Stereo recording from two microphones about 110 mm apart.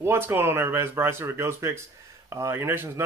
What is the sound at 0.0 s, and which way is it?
Speech, 20° right (ahead or behind).